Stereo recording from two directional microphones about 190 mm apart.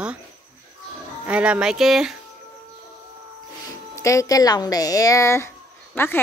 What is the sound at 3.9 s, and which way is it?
A woman's voice, 15° left (ahead or behind).